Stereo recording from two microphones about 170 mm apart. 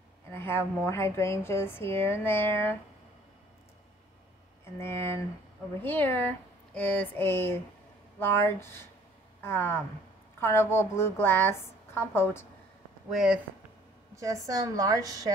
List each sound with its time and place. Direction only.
0.3 s a woman's voice: 15° left (ahead or behind)
4.7 s a woman's voice: 15° left (ahead or behind)
13.1 s speech: 5° right (ahead or behind)
14.1 s a woman's voice: 20° right (ahead or behind)